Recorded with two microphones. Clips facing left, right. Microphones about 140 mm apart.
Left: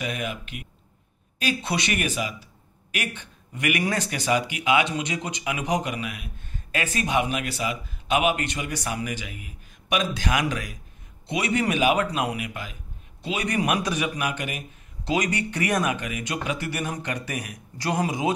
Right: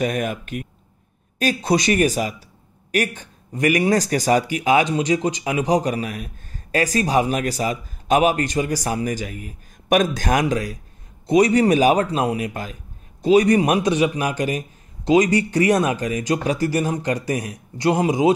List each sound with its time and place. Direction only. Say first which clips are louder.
0.0 s speech: right 8 dB; 45° right (ahead or behind)
10.4 s speech: right 7 dB; 35° right (ahead or behind)